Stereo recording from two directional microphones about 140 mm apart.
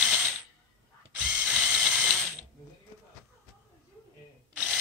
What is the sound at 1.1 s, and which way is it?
Ratchet, 10° right (ahead or behind).